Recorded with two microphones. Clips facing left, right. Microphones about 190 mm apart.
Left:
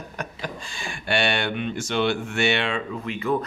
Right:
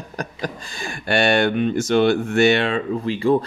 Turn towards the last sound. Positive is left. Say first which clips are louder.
# right 8 dB
turn(degrees=-30)  # may be behind; listen again after turning